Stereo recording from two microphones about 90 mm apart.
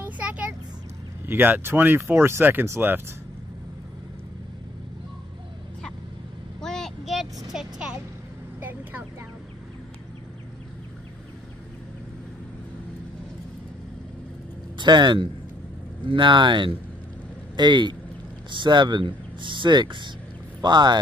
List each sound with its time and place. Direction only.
0.0 s vehicle: 15° right (ahead or behind)
1.2 s speech: 20° right (ahead or behind)
6.6 s a sound: 5° left (ahead or behind)
7.5 s vehicle: 10° right (ahead or behind)
8.5 s vehicle: 20° right (ahead or behind)
14.8 s speech: 60° right (ahead or behind)